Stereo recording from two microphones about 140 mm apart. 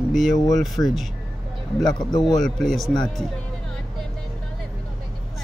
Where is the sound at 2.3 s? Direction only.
Centre (ahead or behind).